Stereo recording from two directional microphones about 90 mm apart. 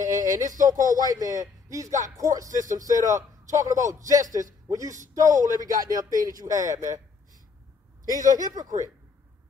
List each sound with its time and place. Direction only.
0.3 s a man's voice: 40° right (ahead or behind)
8.0 s speech: 40° right (ahead or behind)